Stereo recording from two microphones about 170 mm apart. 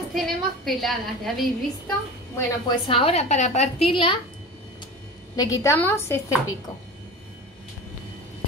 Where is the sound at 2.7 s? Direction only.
30° left (ahead or behind).